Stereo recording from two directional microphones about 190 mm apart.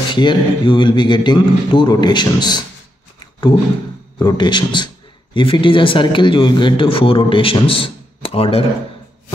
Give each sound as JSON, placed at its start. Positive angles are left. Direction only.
{"t": 0.1, "sound": "a man's voice", "side_deg": 25}
{"t": 4.2, "sound": "a man's voice", "side_deg": 20}